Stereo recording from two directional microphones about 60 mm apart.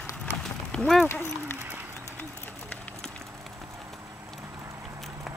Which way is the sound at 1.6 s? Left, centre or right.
Right.